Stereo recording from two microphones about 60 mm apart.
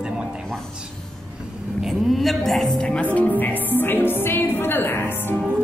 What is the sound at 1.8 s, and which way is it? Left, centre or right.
Speech, centre.